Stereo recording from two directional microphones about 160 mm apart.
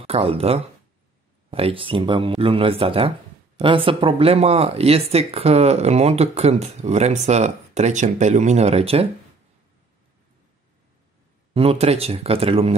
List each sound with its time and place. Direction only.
0.0 s speech: 40° right (ahead or behind)
11.5 s speech: 40° right (ahead or behind)